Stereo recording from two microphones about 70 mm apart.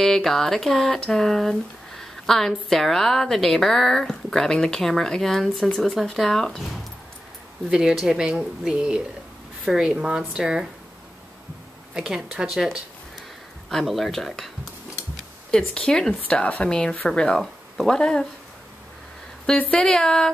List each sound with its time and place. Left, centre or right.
0.0 s a sound: centre
7.7 s a woman's voice: centre
11.9 s a woman's voice: centre
13.7 s a sound: centre
15.7 s speech: centre
19.7 s speech: centre